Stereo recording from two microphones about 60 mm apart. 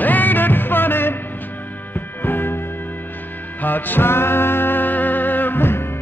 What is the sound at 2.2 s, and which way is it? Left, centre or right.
Music, left.